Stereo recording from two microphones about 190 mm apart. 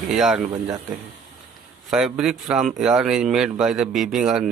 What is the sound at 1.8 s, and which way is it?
Speech, 5° right (ahead or behind).